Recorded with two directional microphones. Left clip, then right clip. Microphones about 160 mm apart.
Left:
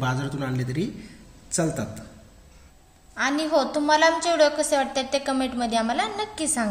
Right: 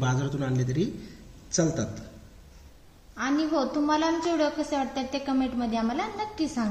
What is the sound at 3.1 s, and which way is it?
A woman's voice, 65° left (ahead or behind).